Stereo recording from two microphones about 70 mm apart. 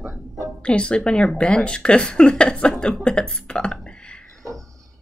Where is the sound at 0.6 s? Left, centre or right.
Centre.